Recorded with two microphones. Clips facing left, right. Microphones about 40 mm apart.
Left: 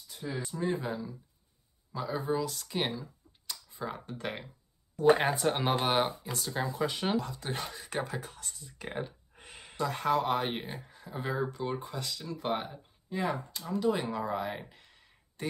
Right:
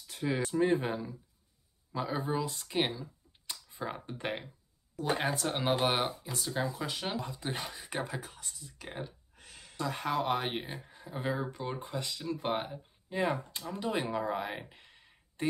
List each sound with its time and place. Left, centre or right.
0.0 s speech: right; by 2.9 s centre
3.4 s computer keyboard: right
5.1 s speech: centre
7.2 s speech: centre
9.3 s a sound: left
9.8 s speech: centre
10.8 s a sound: centre
11.8 s speech: right
14.3 s speech: centre
14.7 s a sound: right